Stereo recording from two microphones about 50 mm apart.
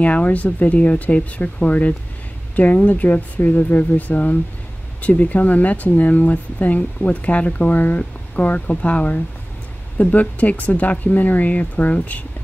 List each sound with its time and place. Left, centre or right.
0.0 s speech: left